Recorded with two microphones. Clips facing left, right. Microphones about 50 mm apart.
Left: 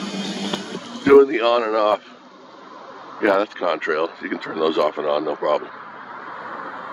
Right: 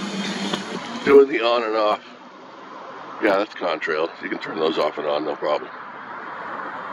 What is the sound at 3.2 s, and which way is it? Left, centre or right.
Speech, centre.